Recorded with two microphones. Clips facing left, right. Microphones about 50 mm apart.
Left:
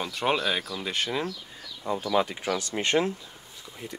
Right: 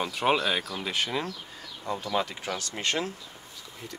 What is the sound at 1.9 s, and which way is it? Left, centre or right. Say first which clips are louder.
Speech: left 4 dB; centre.